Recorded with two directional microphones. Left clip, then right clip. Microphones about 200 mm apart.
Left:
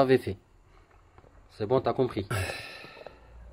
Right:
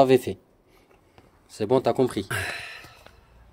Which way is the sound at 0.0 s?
Centre (ahead or behind).